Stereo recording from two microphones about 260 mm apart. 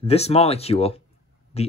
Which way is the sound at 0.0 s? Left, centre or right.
Left.